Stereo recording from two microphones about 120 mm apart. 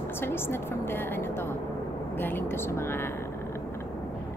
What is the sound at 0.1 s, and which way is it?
A woman's voice, 20° left (ahead or behind).